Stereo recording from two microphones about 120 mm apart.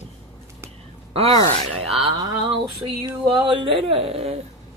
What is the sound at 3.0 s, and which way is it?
Speech, 45° right (ahead or behind).